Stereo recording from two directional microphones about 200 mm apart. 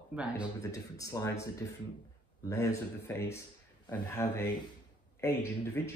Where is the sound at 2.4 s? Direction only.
15° left (ahead or behind).